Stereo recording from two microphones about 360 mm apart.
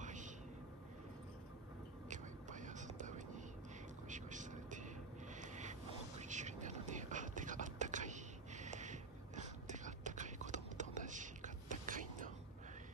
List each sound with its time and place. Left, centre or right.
0.0 s vehicle: right
2.0 s whispering: right
4.1 s a sound: right